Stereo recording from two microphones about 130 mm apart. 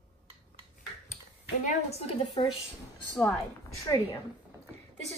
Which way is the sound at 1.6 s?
55° left (ahead or behind).